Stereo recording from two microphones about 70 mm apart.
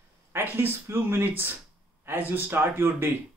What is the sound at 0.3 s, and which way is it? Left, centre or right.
A man's voice, right.